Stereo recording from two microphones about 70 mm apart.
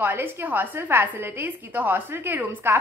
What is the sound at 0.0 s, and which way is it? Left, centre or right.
A woman's voice, right.